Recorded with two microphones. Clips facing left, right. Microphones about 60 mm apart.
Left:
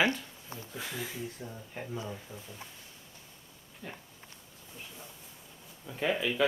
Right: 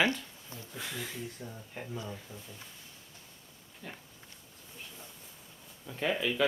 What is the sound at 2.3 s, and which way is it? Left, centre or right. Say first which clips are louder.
Speech: left 2 dB; centre.